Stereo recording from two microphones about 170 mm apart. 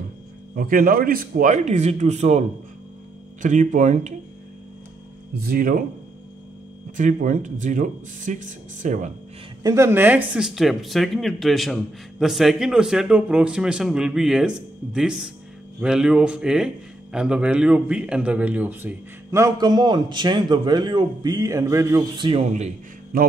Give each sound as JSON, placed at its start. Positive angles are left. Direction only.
{"t": 0.6, "sound": "speech", "side_deg": -55}
{"t": 3.4, "sound": "speech", "side_deg": -45}
{"t": 5.3, "sound": "speech", "side_deg": -65}
{"t": 7.0, "sound": "speech", "side_deg": -50}
{"t": 9.6, "sound": "speech", "side_deg": -20}
{"t": 23.1, "sound": "speech", "side_deg": -55}